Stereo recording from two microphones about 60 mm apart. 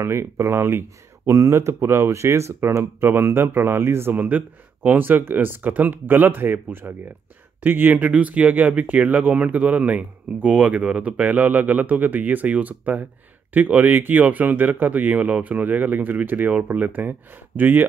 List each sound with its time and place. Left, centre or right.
0.0 s speech: right
1.2 s speech: right
2.8 s speech: right